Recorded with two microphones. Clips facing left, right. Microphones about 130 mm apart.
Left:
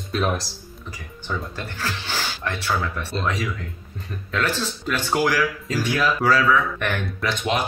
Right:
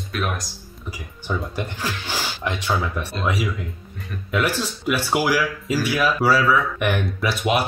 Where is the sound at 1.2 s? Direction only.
15° right (ahead or behind).